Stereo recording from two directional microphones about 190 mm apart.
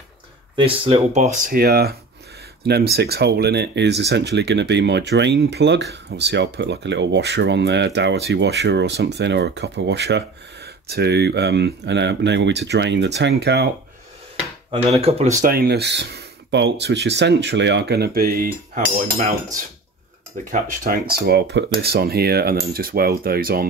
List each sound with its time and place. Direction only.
0.6 s speech: 30° right (ahead or behind); by 13.7 s 60° right (ahead or behind)
15.0 s speech: 35° right (ahead or behind)
15.4 s speech: 55° right (ahead or behind)
20.5 s speech: 50° right (ahead or behind)
21.8 s cutlery: 55° right (ahead or behind)